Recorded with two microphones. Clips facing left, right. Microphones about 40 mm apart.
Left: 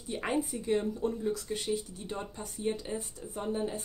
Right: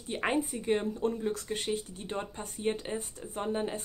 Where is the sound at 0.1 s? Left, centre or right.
Right.